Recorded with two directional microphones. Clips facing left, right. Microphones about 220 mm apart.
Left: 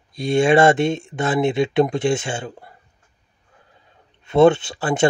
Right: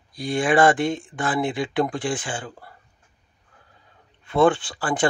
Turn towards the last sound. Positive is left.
turn(degrees=25)  # may be behind; listen again after turning